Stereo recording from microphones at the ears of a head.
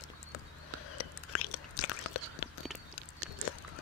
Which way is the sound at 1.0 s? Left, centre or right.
Left.